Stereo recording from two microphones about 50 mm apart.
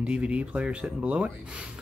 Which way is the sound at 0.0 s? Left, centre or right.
Right.